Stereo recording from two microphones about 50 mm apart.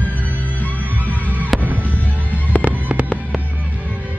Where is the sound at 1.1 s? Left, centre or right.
Right.